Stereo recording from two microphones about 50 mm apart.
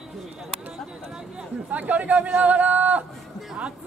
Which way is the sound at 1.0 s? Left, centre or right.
Centre.